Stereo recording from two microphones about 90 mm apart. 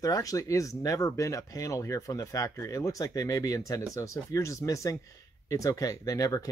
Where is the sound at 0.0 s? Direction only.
40° left (ahead or behind).